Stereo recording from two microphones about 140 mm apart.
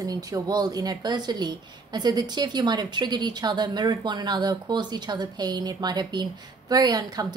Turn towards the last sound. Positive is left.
turn(degrees=-30)  # may be behind; listen again after turning